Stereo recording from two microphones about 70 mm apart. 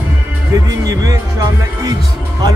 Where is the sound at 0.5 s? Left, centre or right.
Right.